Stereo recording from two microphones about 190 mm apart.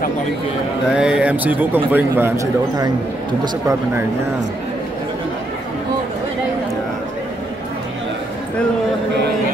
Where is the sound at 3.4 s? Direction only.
15° right (ahead or behind).